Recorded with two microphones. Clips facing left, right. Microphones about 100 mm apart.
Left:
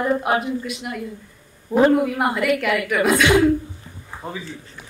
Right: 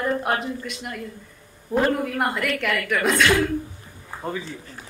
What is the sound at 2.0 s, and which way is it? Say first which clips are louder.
Speech: left 4 dB; 5° left (ahead or behind).